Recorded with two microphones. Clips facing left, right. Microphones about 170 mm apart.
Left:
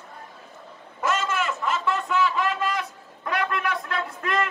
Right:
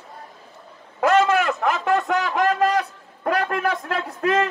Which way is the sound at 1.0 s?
60° right (ahead or behind).